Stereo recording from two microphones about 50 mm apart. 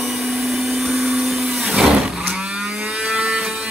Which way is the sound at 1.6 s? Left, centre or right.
Right.